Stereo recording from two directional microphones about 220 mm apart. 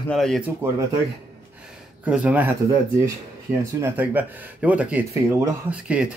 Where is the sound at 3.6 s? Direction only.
10° right (ahead or behind).